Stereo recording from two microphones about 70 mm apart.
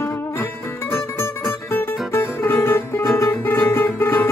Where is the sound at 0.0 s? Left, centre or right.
Left.